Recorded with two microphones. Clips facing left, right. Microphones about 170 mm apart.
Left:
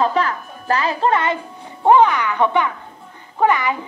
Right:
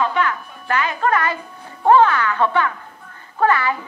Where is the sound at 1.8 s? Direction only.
15° left (ahead or behind).